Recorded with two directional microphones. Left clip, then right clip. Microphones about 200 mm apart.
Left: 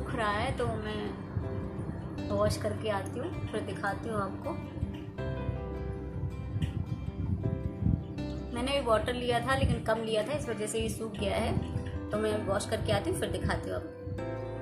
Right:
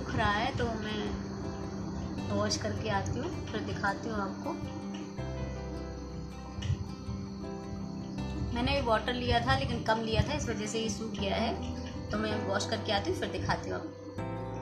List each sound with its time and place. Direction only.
0.1 s a sound: 5° left (ahead or behind)
2.2 s speech: 5° left (ahead or behind)
8.5 s a woman's voice: 5° left (ahead or behind)